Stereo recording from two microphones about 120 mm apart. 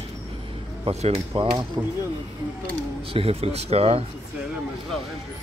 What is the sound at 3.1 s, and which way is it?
Speech, 55° right (ahead or behind).